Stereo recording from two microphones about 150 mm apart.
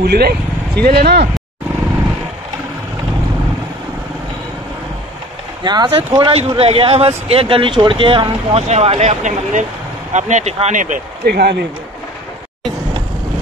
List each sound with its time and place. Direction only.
0.0 s speech: 90° right
5.6 s speech: 30° right (ahead or behind); by 11.5 s 90° right